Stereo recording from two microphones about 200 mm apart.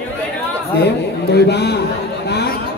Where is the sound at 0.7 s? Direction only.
55° left (ahead or behind).